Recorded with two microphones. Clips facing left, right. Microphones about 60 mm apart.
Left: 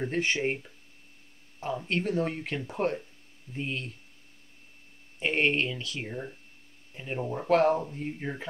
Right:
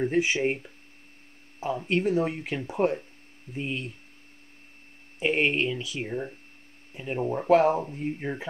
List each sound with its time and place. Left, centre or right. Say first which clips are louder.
0.0 s speech: right 4 dB; centre
1.6 s speech: right 4 dB; centre
5.2 s speech: right 2 dB; centre
6.0 s speech: right 5 dB; centre
6.9 s speech: right 4 dB; centre